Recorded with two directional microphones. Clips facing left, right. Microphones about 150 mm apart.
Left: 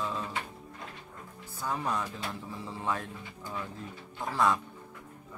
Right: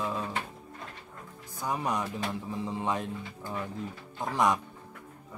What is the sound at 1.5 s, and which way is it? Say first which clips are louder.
Speech: right 2 dB; 15° right (ahead or behind).